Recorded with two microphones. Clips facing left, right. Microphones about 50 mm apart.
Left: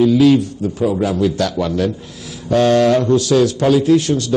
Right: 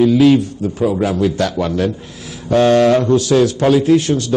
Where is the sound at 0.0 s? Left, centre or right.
Right.